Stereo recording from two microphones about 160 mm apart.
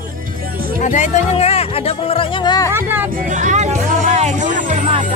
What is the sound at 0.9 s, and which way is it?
Speech, 45° left (ahead or behind).